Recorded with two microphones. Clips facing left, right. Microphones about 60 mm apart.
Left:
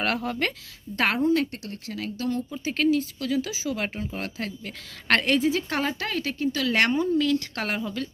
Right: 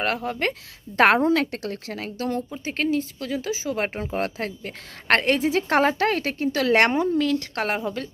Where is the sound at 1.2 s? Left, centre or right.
Right.